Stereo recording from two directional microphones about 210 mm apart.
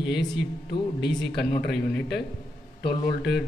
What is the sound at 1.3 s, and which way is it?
A man's voice, 50° left (ahead or behind).